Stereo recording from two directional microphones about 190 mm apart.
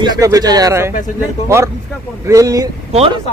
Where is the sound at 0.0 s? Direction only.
20° right (ahead or behind).